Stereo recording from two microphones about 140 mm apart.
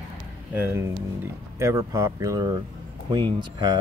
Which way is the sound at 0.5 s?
15° right (ahead or behind).